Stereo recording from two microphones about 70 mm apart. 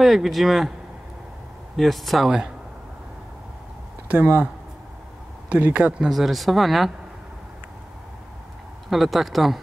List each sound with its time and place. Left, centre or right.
0.0 s speech: centre
1.8 s speech: centre
4.1 s speech: right
5.5 s speech: right
6.0 s speech: centre
8.8 s speech: centre